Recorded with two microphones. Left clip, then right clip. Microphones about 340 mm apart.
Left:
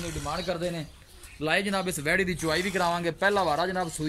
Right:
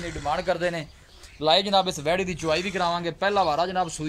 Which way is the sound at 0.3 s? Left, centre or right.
Right.